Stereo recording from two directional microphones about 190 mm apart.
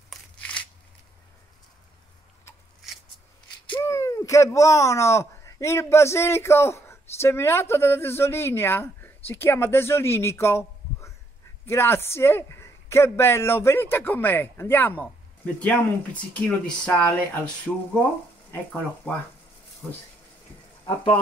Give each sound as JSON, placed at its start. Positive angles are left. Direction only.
{"t": 0.1, "sound": "a sound", "side_deg": 5}
{"t": 3.7, "sound": "a man's voice", "side_deg": 15}
{"t": 16.3, "sound": "speech", "side_deg": 5}
{"t": 19.1, "sound": "a man's voice", "side_deg": 5}
{"t": 20.8, "sound": "speech", "side_deg": 30}